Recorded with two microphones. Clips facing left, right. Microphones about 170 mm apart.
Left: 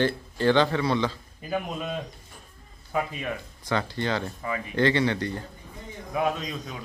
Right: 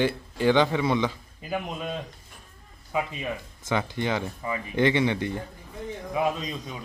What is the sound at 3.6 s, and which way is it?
A man's voice, 15° right (ahead or behind).